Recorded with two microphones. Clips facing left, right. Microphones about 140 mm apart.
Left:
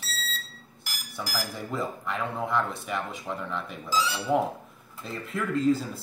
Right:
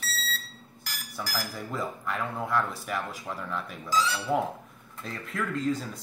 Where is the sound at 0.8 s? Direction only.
10° left (ahead or behind).